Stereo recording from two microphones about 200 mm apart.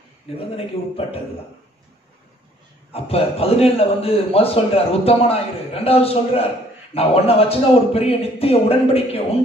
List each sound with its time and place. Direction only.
0.6 s a man's voice: 30° left (ahead or behind)
2.9 s a man's voice: 30° left (ahead or behind)